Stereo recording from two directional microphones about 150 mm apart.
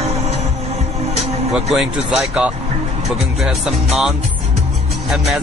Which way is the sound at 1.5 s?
Centre (ahead or behind).